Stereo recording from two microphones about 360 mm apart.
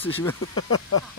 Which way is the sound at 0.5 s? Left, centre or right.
Left.